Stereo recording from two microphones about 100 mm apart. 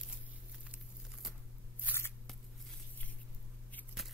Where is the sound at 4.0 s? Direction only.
5° right (ahead or behind).